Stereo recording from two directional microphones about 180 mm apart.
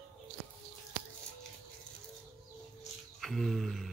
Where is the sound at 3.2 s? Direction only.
Centre (ahead or behind).